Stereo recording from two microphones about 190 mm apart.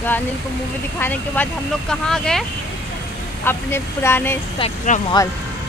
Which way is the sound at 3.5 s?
10° left (ahead or behind).